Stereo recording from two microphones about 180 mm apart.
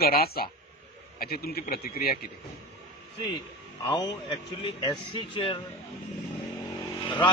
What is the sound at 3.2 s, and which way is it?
A man's voice, 25° left (ahead or behind).